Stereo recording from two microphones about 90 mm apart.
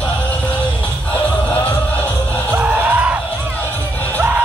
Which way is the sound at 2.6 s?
15° right (ahead or behind).